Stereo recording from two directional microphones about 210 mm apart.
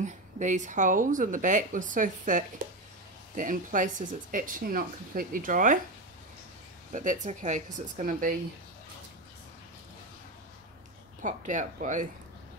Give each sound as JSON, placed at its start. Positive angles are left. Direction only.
{"t": 0.0, "sound": "speech", "side_deg": -35}
{"t": 6.9, "sound": "speech", "side_deg": -35}
{"t": 11.2, "sound": "speech", "side_deg": -35}